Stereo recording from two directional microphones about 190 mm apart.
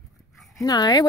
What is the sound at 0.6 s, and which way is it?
Speech, 20° left (ahead or behind).